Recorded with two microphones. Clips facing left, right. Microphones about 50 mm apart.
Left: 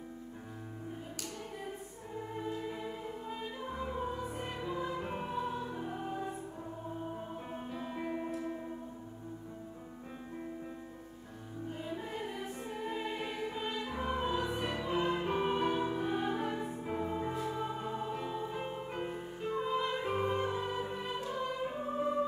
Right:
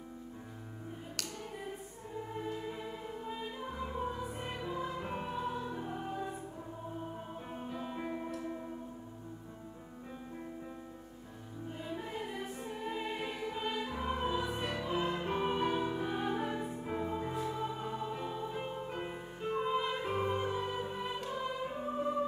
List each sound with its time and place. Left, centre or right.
2.6 s music: centre
11.7 s music: centre
14.5 s music: left
14.8 s music: centre
18.9 s music: centre
19.9 s music: centre